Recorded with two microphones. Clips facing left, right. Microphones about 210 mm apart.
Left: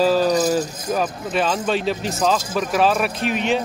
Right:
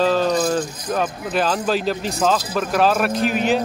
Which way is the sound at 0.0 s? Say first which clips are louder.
Left 1 dB; 5° left (ahead or behind).